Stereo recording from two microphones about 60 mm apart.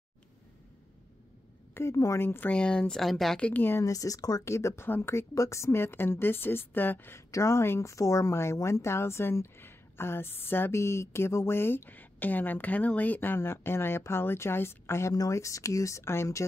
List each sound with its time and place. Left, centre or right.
1.7 s a woman's voice: left
2.5 s speech: centre
3.0 s a woman's voice: centre
3.3 s speech: left
3.8 s speech: left
4.5 s speech: left
5.3 s a woman's voice: left
7.2 s speech: left
7.8 s speech: left
10.7 s a woman's voice: left
15.3 s speech: left
16.0 s speech: left